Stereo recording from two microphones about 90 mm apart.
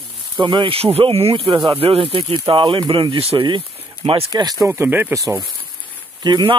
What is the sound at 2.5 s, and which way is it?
Speech, 70° right (ahead or behind).